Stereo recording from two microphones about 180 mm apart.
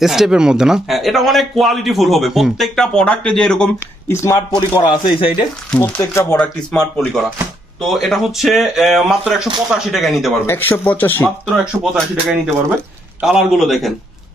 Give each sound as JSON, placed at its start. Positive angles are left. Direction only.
{"t": 0.0, "sound": "a man's voice", "side_deg": 0}
{"t": 4.1, "sound": "speech", "side_deg": 15}
{"t": 4.6, "sound": "speech", "side_deg": 25}
{"t": 5.8, "sound": "speech", "side_deg": 15}
{"t": 6.3, "sound": "a man's voice", "side_deg": 5}
{"t": 10.4, "sound": "a man's voice", "side_deg": 10}